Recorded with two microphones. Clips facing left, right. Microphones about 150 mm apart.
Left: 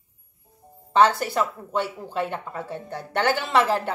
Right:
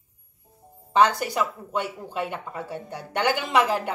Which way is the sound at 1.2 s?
10° right (ahead or behind).